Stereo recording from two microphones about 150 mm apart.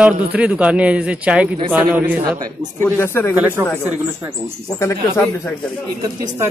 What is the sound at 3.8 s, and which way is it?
Speech, 15° right (ahead or behind).